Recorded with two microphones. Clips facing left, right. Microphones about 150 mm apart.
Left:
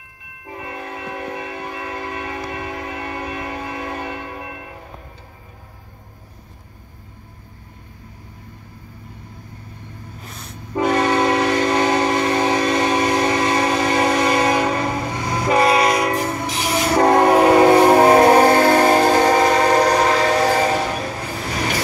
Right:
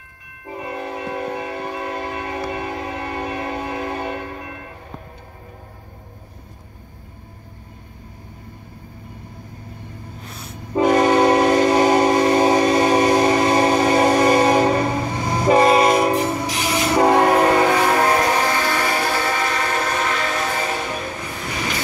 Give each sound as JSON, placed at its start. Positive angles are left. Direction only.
{"t": 0.5, "sound": "train", "side_deg": -25}
{"t": 10.7, "sound": "train", "side_deg": -20}
{"t": 16.2, "sound": "train horn", "side_deg": -5}
{"t": 16.5, "sound": "train", "side_deg": 5}
{"t": 17.5, "sound": "train", "side_deg": 25}